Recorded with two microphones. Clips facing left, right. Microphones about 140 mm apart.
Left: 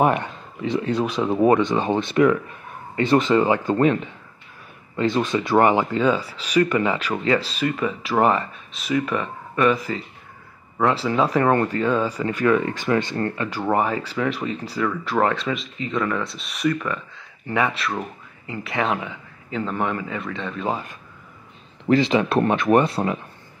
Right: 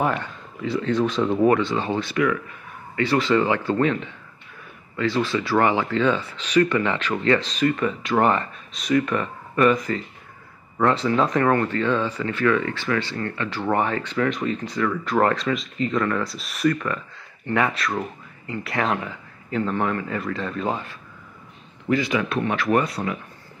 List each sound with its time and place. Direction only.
0.0 s speech: 20° left (ahead or behind)
4.9 s speech: 20° left (ahead or behind)
20.1 s speech: centre (ahead or behind)
20.7 s speech: 15° left (ahead or behind)
21.8 s speech: 30° left (ahead or behind)